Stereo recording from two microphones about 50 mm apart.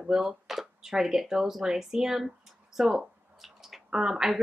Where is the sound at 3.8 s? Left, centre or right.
Centre.